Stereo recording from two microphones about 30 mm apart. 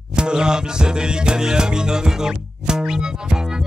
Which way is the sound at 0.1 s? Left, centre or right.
Right.